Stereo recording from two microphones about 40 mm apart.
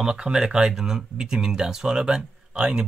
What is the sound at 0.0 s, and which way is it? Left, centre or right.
Speech, centre.